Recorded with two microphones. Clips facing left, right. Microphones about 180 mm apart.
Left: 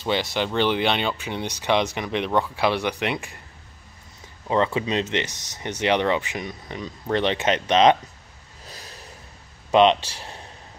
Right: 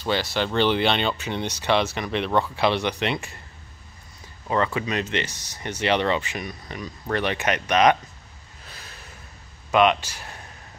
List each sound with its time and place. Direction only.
0.0 s speech: 20° left (ahead or behind)
4.5 s speech: 20° left (ahead or behind)
8.6 s a sound: 35° left (ahead or behind)
9.7 s speech: 30° left (ahead or behind)